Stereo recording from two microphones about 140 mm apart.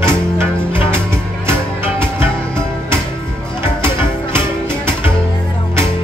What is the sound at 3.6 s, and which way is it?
Music, 15° right (ahead or behind).